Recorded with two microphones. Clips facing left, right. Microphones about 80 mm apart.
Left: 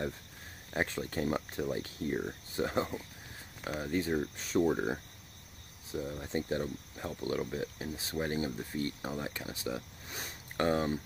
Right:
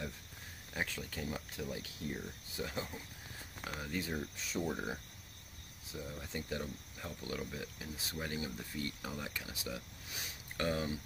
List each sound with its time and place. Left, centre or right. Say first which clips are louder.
0.7 s speech: left 7 dB; left
3.8 s speech: left 8 dB; left
4.4 s speech: left 9 dB; left
5.9 s speech: left 8 dB; left
10.0 s speech: left 4 dB; left